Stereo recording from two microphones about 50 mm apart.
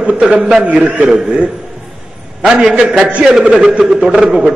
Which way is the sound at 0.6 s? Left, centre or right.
Right.